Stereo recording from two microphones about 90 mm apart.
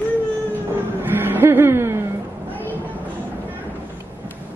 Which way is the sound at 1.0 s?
20° right (ahead or behind).